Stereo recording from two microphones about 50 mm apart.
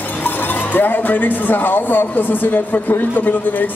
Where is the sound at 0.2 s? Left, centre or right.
Left.